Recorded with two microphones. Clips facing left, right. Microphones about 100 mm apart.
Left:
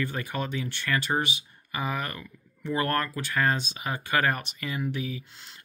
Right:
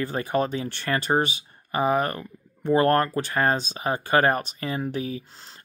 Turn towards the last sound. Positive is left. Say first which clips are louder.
# right 3 dB
turn(degrees=-35)  # may be behind; listen again after turning